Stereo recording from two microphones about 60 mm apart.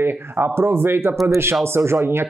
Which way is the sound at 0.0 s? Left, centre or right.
Right.